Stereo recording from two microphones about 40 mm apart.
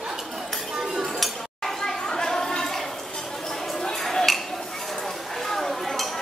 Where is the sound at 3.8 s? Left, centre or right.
Centre.